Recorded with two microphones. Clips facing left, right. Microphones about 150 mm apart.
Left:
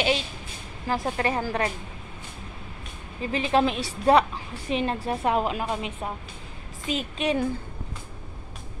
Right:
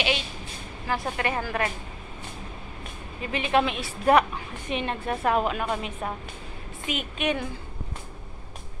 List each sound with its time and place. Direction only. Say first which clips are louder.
0.9 s a woman's voice: left 2 dB; 30° left (ahead or behind)
3.2 s a woman's voice: left 1 dB; 30° left (ahead or behind)
6.9 s a woman's voice: left 2 dB; 30° left (ahead or behind)